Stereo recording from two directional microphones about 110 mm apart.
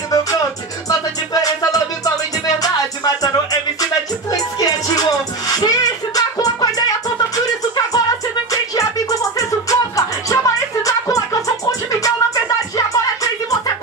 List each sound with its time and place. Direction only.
0.8 s music: 35° left (ahead or behind)
4.3 s music: 35° left (ahead or behind)
7.3 s a sound: 35° left (ahead or behind)
9.4 s music: 30° left (ahead or behind)